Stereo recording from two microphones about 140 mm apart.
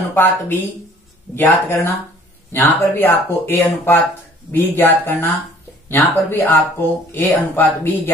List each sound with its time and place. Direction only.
0.1 s speech: 15° left (ahead or behind)